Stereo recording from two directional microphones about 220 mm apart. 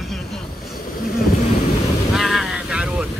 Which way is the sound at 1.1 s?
45° left (ahead or behind).